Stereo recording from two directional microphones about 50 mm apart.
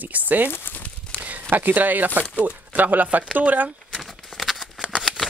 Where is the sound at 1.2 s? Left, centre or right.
Right.